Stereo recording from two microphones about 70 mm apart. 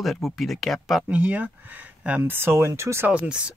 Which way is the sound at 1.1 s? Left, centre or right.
Right.